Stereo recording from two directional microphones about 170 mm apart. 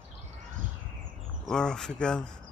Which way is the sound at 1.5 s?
5° left (ahead or behind).